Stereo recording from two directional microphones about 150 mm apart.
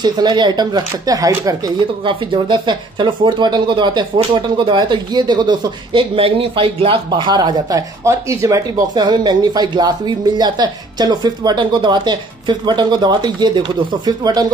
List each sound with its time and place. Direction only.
0.0 s speech: 30° right (ahead or behind)
7.1 s speech: 30° right (ahead or behind)